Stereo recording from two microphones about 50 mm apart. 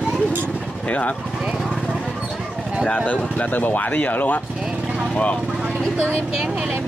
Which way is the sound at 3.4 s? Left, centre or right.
Left.